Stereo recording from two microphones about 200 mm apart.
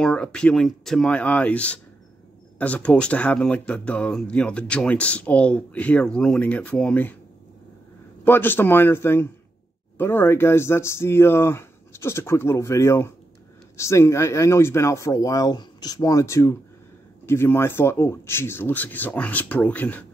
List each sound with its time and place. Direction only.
0.0 s speech: 5° left (ahead or behind)
8.3 s speech: 10° left (ahead or behind)